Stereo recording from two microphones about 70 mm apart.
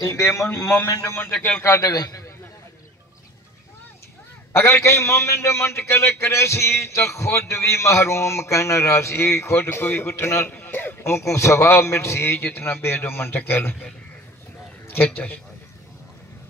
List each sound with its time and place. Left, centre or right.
0.1 s a man's voice: left
4.5 s a man's voice: left
14.9 s a man's voice: left